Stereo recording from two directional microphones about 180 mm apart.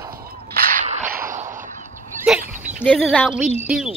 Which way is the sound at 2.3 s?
Centre (ahead or behind).